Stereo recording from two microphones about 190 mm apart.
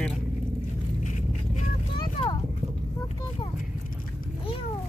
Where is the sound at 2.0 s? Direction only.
25° left (ahead or behind).